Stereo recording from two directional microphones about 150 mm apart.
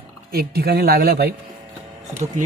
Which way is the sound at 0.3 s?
90° right.